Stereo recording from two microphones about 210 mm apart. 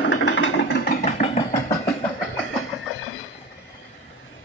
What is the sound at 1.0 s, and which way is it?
Vehicle, 30° left (ahead or behind).